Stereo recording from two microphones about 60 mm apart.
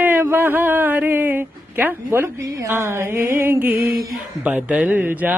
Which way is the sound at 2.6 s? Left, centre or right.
Right.